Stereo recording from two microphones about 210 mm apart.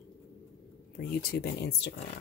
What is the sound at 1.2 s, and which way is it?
Speech, 50° left (ahead or behind).